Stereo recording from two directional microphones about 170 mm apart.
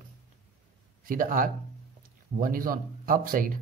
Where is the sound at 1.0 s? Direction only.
55° right (ahead or behind).